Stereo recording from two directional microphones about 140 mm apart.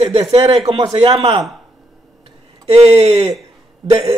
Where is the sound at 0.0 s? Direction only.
45° right (ahead or behind).